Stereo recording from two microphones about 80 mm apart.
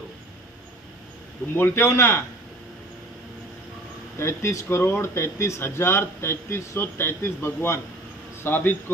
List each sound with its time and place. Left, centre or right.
1.6 s a man's voice: left
4.2 s a man's voice: left